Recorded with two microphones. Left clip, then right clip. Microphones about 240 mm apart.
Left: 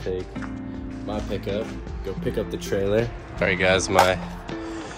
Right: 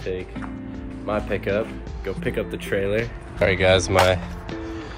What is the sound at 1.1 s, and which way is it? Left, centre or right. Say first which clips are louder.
Speech: right 5 dB; centre.